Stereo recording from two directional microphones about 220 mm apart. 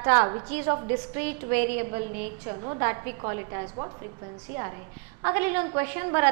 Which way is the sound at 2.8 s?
10° right (ahead or behind).